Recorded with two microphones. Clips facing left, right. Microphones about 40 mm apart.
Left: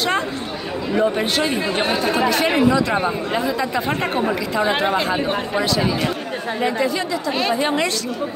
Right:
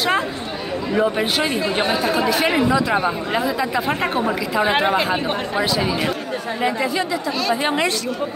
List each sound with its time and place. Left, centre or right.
0.9 s speech: centre
4.7 s speech: right
7.6 s speech: centre